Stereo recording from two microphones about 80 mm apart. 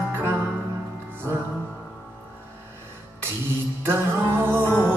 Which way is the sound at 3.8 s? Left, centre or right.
Right.